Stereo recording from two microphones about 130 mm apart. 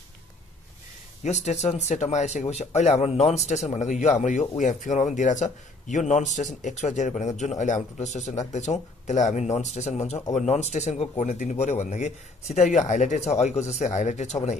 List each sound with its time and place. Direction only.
1.2 s speech: 60° left (ahead or behind)